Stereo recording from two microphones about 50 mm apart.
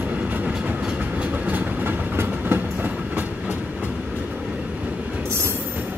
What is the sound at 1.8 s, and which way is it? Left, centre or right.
Train, right.